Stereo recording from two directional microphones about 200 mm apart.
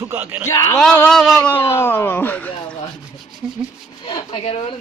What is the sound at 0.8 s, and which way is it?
Speech, 5° left (ahead or behind).